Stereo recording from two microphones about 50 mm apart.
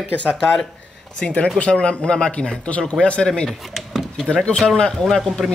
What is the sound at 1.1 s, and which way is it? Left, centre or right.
Speech, left.